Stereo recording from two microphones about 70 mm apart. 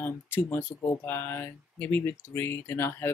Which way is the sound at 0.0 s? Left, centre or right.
Left.